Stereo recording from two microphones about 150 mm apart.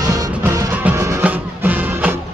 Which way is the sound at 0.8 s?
10° right (ahead or behind).